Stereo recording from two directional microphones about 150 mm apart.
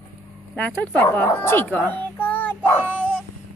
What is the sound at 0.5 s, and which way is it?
A child's voice, 10° left (ahead or behind).